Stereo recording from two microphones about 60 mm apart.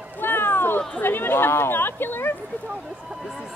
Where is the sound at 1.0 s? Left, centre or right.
Left.